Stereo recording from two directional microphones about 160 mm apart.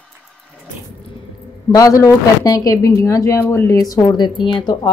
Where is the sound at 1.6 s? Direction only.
20° left (ahead or behind).